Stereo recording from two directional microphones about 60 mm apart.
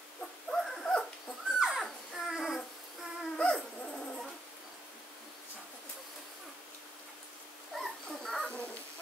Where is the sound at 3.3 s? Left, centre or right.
Centre.